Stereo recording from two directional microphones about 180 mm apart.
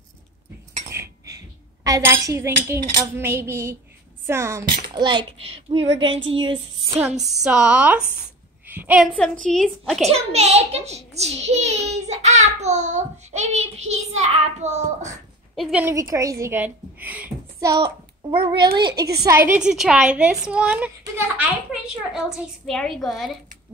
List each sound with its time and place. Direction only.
1.9 s a sound: 15° right (ahead or behind)
4.3 s speech: 15° right (ahead or behind)
7.0 s a sound: 5° right (ahead or behind)
9.1 s a woman's voice: 5° left (ahead or behind)
10.1 s a child's voice: 35° right (ahead or behind)
15.5 s a woman's voice: 5° right (ahead or behind)
15.9 s a woman's voice: 15° right (ahead or behind)
17.6 s speech: 20° right (ahead or behind)
19.2 s a woman's voice: 10° right (ahead or behind)